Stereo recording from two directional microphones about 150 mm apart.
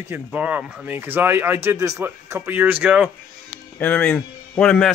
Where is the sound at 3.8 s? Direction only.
10° left (ahead or behind).